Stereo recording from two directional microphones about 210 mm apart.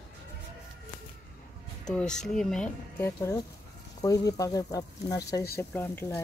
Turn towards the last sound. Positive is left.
turn(degrees=10)  # may be behind; listen again after turning